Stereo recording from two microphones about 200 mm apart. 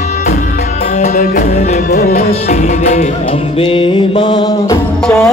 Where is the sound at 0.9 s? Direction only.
35° left (ahead or behind); by 4.8 s 20° left (ahead or behind).